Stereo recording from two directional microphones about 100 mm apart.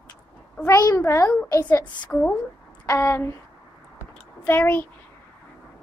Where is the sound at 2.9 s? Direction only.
25° left (ahead or behind).